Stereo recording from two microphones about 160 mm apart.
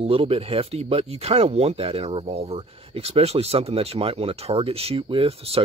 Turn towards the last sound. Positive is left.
turn(degrees=-40)  # may be behind; listen again after turning